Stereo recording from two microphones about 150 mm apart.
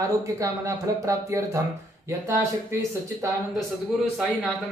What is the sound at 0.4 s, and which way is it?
A man's voice, 20° right (ahead or behind).